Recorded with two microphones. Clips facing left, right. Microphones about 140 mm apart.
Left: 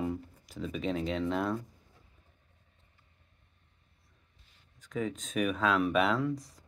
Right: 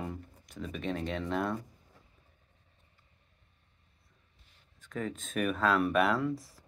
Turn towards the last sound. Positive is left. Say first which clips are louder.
# even
turn(degrees=0)  # may be behind; listen again after turning